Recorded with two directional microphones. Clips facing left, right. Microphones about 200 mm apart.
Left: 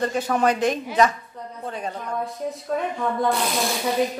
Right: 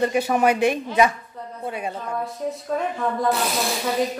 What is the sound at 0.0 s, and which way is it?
Speech, 10° right (ahead or behind).